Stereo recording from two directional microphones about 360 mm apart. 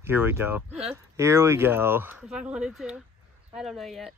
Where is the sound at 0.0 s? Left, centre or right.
Centre.